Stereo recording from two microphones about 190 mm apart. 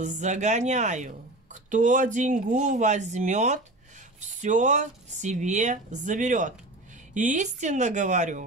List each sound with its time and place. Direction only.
0.0 s speech: 40° right (ahead or behind)